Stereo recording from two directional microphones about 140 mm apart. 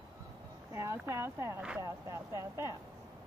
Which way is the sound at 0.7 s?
20° right (ahead or behind).